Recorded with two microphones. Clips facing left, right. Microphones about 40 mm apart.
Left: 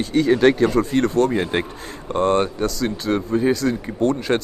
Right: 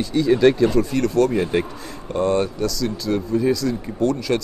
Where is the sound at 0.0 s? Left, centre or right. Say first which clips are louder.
Even; left.